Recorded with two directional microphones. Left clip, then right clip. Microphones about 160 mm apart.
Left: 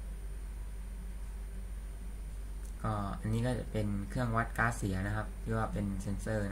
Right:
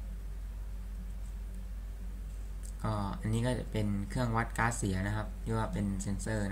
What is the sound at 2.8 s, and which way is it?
Speech, 5° right (ahead or behind).